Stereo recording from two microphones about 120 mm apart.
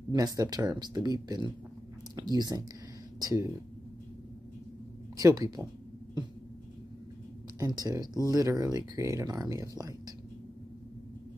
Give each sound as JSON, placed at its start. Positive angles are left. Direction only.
{"t": 0.1, "sound": "speech", "side_deg": -30}
{"t": 5.1, "sound": "speech", "side_deg": -30}
{"t": 7.5, "sound": "speech", "side_deg": -30}